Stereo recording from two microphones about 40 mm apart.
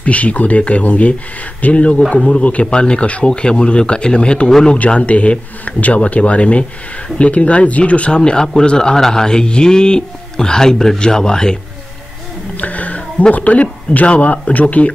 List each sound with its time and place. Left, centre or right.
0.0 s speech: left
4.7 s speech: left; by 11.5 s centre
12.5 s music: left
13.3 s speech: left